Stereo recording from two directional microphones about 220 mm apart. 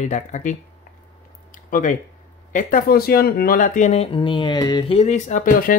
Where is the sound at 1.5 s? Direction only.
35° left (ahead or behind).